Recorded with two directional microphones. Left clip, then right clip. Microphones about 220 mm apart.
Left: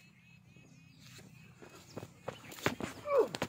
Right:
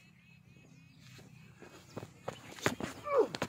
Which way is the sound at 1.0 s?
55° left (ahead or behind).